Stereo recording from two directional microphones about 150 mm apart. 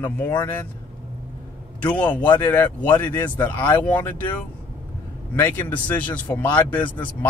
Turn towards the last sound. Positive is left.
turn(degrees=10)  # may be behind; listen again after turning